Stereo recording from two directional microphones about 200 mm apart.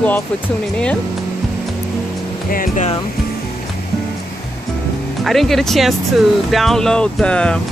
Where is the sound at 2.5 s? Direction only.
45° left (ahead or behind).